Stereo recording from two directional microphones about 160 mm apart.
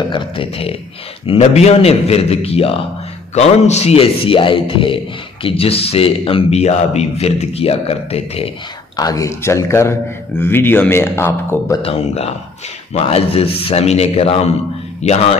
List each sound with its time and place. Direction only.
0.1 s a man's voice: 35° left (ahead or behind)
8.9 s speech: 20° left (ahead or behind)
11.8 s a man's voice: 40° left (ahead or behind)